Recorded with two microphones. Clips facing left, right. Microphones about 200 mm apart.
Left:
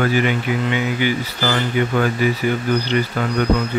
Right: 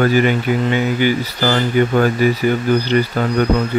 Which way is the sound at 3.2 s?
40° right (ahead or behind).